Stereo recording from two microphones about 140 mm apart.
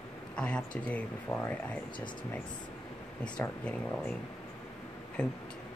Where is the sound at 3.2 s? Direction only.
5° left (ahead or behind).